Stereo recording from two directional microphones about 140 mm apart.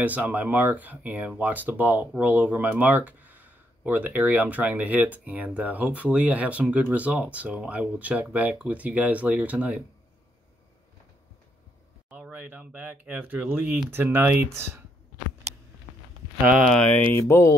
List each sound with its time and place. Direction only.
0.0 s speech: 10° right (ahead or behind)
12.1 s speech: 10° right (ahead or behind)
16.6 s speech: 10° left (ahead or behind)